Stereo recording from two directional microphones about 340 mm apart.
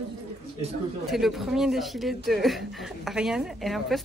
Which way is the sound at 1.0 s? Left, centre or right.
Centre.